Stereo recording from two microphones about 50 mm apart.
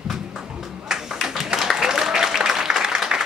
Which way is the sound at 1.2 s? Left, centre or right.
Centre.